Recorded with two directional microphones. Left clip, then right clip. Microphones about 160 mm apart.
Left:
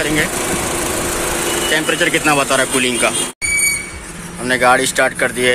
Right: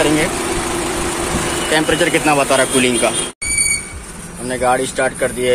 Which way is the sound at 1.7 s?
15° right (ahead or behind).